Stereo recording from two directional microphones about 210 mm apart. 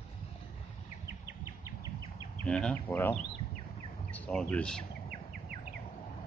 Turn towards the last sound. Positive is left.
turn(degrees=5)  # may be behind; listen again after turning